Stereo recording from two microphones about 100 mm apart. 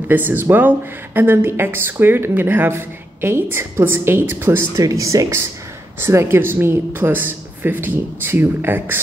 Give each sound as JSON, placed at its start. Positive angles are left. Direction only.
{"t": 0.1, "sound": "speech", "side_deg": -20}